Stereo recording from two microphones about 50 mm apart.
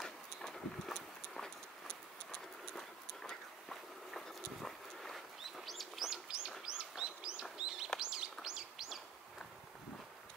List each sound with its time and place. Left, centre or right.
0.0 s horse: centre
5.7 s bird: centre
6.0 s bird: centre